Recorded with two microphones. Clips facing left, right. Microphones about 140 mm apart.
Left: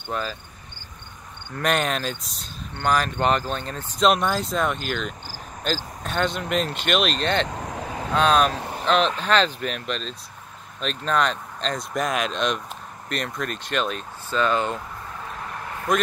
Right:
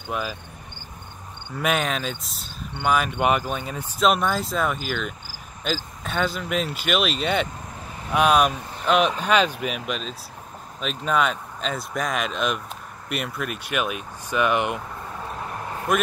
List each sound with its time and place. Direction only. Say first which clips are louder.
0.1 s speech: even; 10° right (ahead or behind)
1.5 s speech: left 1 dB; 5° right (ahead or behind)
7.4 s vehicle: left 6 dB; 90° left
8.1 s speech: right 1 dB; 10° right (ahead or behind)
15.9 s speech: even; 5° right (ahead or behind)